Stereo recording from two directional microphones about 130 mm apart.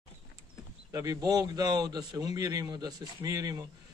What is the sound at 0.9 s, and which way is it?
A man's voice, 30° right (ahead or behind).